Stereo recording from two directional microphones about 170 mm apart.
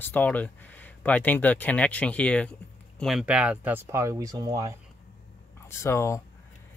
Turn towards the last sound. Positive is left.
turn(degrees=15)  # may be behind; listen again after turning